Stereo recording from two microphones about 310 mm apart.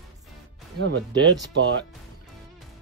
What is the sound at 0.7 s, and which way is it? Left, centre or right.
Speech, right.